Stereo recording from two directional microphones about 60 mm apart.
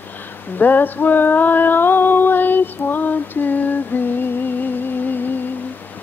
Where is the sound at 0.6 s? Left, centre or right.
Left.